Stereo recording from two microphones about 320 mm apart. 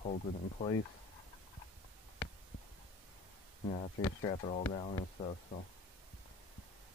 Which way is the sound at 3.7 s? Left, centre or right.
Centre.